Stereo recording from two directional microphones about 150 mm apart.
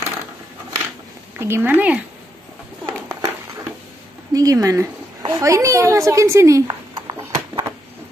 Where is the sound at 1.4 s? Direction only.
15° right (ahead or behind).